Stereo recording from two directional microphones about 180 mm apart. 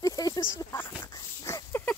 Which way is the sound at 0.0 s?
20° left (ahead or behind).